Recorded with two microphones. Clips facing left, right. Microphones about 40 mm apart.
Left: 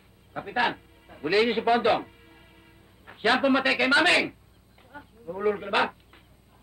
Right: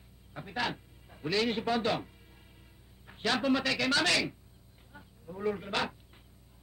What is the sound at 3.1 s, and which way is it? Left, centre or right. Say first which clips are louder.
A man's voice: left 7 dB; left.